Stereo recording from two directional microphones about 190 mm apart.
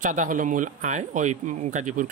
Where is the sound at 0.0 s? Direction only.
40° right (ahead or behind).